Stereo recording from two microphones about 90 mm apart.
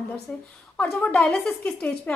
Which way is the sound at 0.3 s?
15° left (ahead or behind).